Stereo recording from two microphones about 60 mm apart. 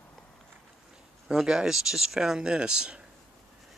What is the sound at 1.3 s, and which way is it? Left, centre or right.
Speech, centre.